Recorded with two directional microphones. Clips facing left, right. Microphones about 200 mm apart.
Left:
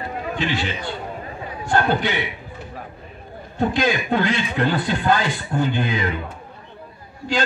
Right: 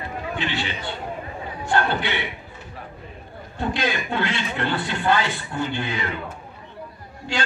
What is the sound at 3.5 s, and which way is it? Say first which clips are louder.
A man's voice: left 5 dB; 45° left (ahead or behind).